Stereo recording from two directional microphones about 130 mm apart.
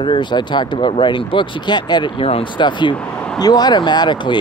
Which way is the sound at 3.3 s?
30° left (ahead or behind).